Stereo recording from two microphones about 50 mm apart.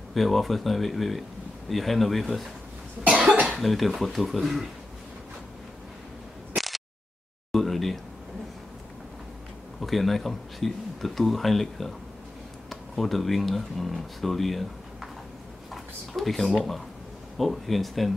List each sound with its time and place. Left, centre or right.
0.1 s speech: centre
3.0 s cough: right
3.4 s speech: centre
6.5 s a sound: centre
9.8 s speech: centre